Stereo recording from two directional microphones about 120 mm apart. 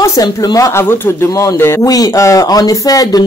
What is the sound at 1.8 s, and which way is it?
Speech, 30° left (ahead or behind).